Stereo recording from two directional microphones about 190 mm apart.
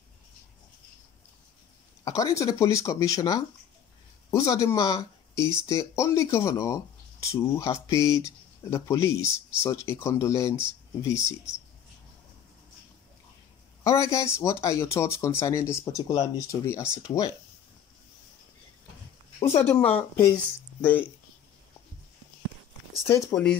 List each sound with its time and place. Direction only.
2.0 s speech: 15° left (ahead or behind)
13.8 s speech: 15° left (ahead or behind)
19.4 s speech: 10° left (ahead or behind)
23.4 s speech: 5° left (ahead or behind)